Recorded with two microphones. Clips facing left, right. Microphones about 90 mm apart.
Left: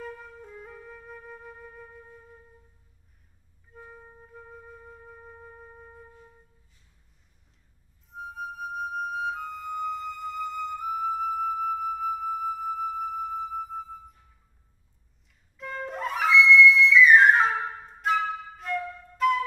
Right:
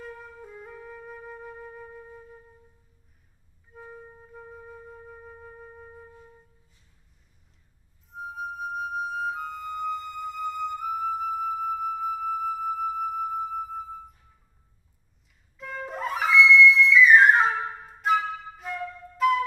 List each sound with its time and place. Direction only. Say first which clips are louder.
0.0 s flute: left 1 dB; centre (ahead or behind)
3.7 s flute: right 3 dB; 5° right (ahead or behind)
8.1 s flute: right 2 dB; centre (ahead or behind)
15.5 s flute: even; centre (ahead or behind)